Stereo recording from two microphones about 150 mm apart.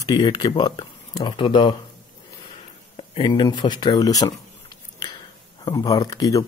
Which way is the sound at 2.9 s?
35° left (ahead or behind).